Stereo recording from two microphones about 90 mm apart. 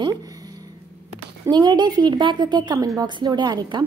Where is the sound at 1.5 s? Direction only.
50° right (ahead or behind).